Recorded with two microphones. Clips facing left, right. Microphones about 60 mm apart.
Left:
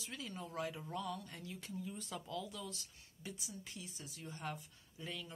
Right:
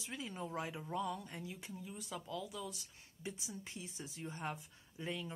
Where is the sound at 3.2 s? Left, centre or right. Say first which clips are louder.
Right 3 dB; right.